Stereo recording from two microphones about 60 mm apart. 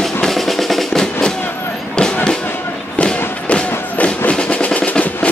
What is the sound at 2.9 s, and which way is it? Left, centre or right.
Thump, centre.